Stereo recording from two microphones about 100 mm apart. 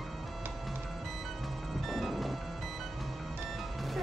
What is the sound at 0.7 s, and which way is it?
Music, centre (ahead or behind).